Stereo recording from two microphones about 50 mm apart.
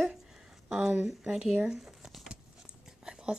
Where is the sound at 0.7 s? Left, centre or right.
Centre.